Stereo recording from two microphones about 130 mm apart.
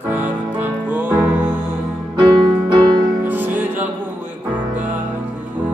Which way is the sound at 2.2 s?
35° right (ahead or behind).